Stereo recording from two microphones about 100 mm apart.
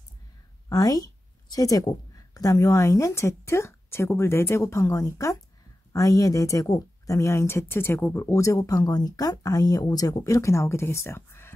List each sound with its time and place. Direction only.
0.7 s a woman's voice: 40° left (ahead or behind)